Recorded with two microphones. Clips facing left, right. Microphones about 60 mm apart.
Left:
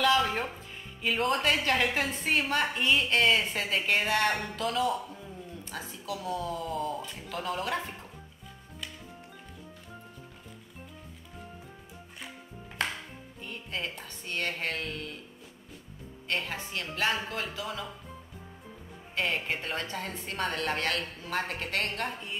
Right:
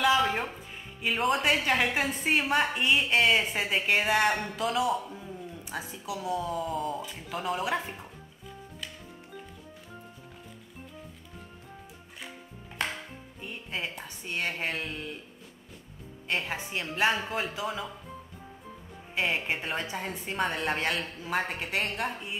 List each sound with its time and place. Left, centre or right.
0.0 s music: centre
1.0 s a woman's voice: centre
13.4 s a woman's voice: centre
16.3 s a woman's voice: centre
19.1 s a woman's voice: centre